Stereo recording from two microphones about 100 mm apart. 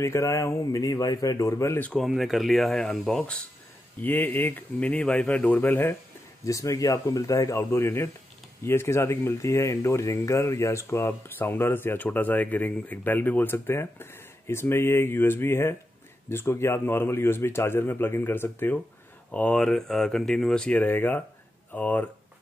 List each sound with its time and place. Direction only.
0.0 s speech: 30° left (ahead or behind)
2.0 s speech: centre (ahead or behind)
4.0 s speech: 20° left (ahead or behind)
6.4 s speech: 35° left (ahead or behind); by 22.0 s 15° left (ahead or behind)